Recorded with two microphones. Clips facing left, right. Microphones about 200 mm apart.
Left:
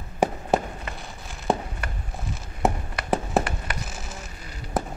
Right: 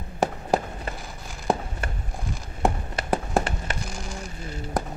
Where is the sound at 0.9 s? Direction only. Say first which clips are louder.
Right 1 dB; centre (ahead or behind).